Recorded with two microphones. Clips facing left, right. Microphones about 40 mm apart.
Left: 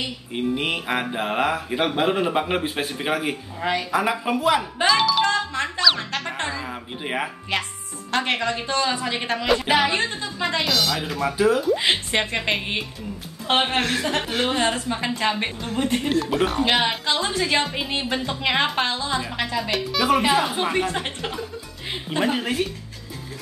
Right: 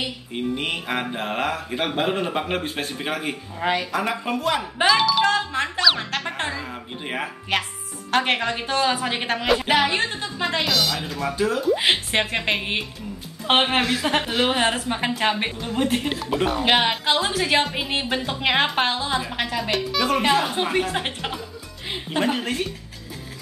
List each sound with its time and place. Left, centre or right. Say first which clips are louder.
0.3 s speech: left 3 dB; centre
6.6 s a sound: left 1 dB; centre
8.1 s a woman's voice: right 2 dB; centre
9.0 s a woman's voice: right 1 dB; centre
9.5 s speech: even; centre
11.7 s a woman's voice: right 1 dB; centre
13.5 s a woman's voice: right 2 dB; centre
16.6 s a woman's voice: right 2 dB; centre
20.6 s a woman's voice: even; centre
22.1 s speech: left 1 dB; centre